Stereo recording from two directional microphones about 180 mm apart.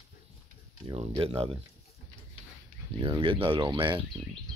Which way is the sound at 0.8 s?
30° right (ahead or behind).